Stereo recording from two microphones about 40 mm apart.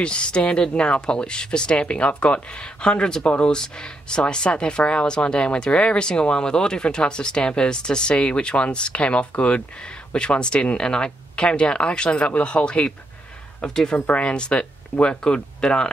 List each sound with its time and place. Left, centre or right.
0.0 s speech: left
13.6 s speech: centre